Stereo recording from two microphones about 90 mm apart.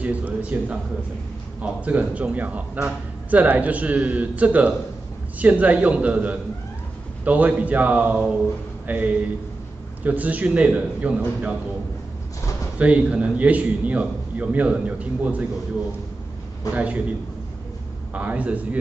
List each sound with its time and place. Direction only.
0.0 s a man's voice: 15° right (ahead or behind)
12.7 s a man's voice: 15° right (ahead or behind)
16.7 s a man's voice: 15° right (ahead or behind)
18.1 s a man's voice: 15° right (ahead or behind)